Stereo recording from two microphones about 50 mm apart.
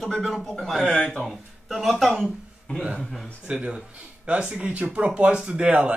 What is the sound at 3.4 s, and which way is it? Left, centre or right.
Speech, right.